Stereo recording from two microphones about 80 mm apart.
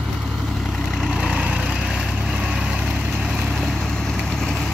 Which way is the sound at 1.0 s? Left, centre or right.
Centre.